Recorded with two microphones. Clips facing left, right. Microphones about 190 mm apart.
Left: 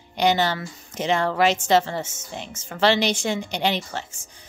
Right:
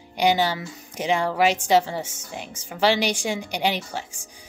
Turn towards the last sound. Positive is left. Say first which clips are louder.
# left 1 dB
turn(degrees=-10)  # may be behind; listen again after turning